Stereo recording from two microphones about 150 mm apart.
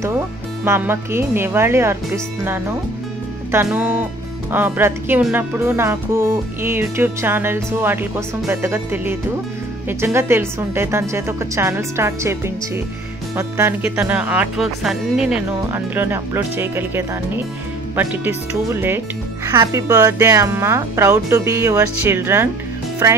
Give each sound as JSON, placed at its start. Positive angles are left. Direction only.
{"t": 0.7, "sound": "speech", "side_deg": -15}
{"t": 3.7, "sound": "speech", "side_deg": -15}